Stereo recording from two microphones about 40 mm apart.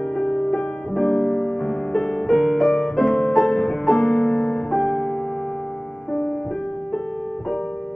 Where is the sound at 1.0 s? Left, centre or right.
Centre.